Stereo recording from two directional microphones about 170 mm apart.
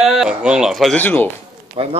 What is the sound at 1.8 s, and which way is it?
Speech, 30° right (ahead or behind).